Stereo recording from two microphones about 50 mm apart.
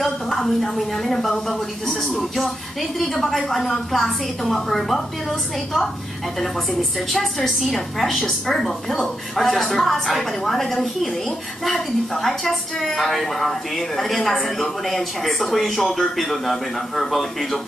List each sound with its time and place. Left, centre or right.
0.0 s a woman's voice: centre